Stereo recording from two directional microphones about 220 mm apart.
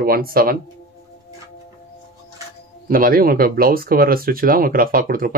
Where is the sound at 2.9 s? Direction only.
40° right (ahead or behind).